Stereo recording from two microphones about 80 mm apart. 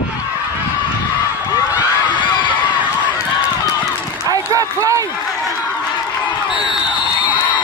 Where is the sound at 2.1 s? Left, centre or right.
Left.